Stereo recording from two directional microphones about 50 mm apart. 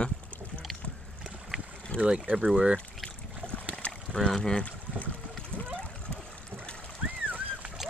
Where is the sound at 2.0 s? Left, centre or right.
Right.